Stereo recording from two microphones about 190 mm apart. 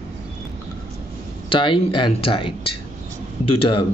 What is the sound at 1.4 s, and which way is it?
A man's voice, 25° left (ahead or behind).